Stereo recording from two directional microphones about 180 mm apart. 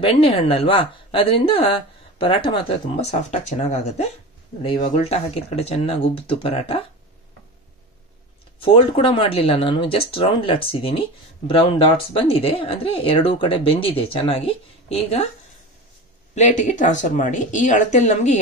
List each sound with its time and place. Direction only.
0.0 s speech: 30° left (ahead or behind)
4.6 s speech: 30° left (ahead or behind)
8.5 s speech: 30° left (ahead or behind)
16.3 s speech: 40° left (ahead or behind)